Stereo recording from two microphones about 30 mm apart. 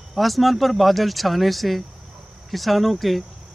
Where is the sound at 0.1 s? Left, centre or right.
Centre.